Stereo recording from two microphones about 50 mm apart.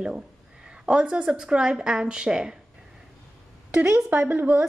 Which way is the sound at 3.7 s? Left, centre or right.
Right.